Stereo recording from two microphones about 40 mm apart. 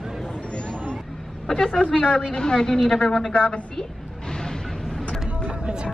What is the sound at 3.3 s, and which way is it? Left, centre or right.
Speech, left.